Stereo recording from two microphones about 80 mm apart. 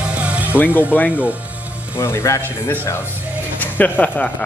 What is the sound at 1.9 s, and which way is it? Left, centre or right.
Speech, left.